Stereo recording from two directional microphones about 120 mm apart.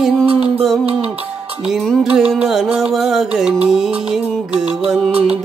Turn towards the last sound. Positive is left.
turn(degrees=-5)  # may be behind; listen again after turning